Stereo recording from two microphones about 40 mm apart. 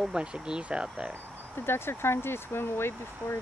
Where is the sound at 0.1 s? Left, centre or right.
Right.